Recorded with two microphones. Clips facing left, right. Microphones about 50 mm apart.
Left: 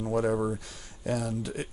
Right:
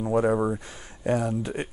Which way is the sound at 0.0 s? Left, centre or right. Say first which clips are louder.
Right 4 dB; right.